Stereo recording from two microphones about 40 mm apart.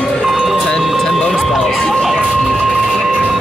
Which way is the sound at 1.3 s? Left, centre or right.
Centre.